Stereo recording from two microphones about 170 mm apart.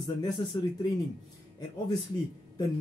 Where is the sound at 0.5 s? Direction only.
25° left (ahead or behind).